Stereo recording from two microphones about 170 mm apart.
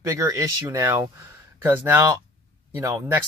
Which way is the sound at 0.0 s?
20° right (ahead or behind).